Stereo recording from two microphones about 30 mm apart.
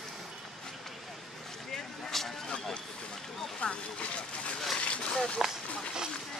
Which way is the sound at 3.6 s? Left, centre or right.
Left.